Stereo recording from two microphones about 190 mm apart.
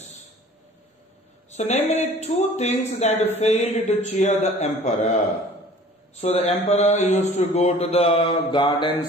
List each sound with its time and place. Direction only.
1.5 s a man's voice: 35° left (ahead or behind)
6.2 s a man's voice: 35° left (ahead or behind)